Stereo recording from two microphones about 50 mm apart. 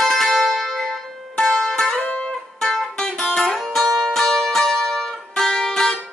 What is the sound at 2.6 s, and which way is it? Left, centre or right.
Music, centre.